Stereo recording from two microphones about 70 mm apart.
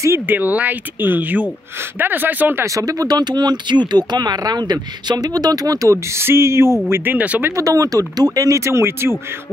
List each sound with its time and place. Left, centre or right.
0.3 s speech: right
2.6 s speech: right
6.9 s speech: right
7.5 s speech: right